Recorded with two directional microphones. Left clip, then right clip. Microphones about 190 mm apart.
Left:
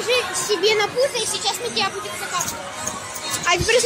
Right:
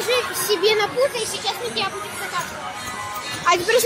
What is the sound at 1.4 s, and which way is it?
Speech, 35° left (ahead or behind).